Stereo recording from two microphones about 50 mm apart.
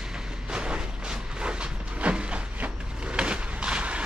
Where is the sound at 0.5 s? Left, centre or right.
Centre.